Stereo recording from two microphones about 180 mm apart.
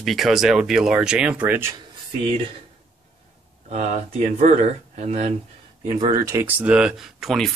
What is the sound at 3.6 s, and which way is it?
Speech, 40° right (ahead or behind).